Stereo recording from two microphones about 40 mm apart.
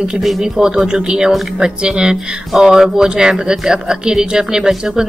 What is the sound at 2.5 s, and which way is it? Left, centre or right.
A woman's voice, centre.